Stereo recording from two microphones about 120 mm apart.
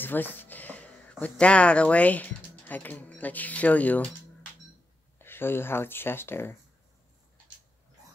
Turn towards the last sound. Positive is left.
turn(degrees=20)  # may be behind; listen again after turning